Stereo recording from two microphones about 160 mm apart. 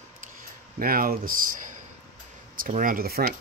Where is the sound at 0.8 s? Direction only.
65° right (ahead or behind).